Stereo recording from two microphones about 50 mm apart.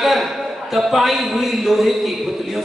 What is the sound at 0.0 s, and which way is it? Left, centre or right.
A man's voice, centre.